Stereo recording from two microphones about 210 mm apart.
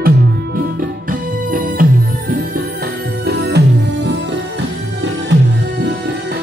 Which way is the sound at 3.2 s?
55° right (ahead or behind).